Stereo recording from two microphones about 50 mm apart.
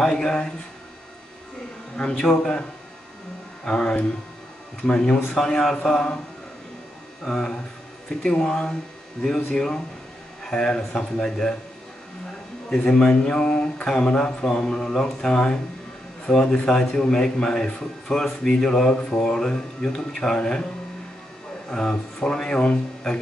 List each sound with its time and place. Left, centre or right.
0.0 s a man's voice: centre
2.0 s a man's voice: centre
3.6 s a man's voice: centre
7.2 s a man's voice: centre
12.6 s a man's voice: left
21.6 s a man's voice: centre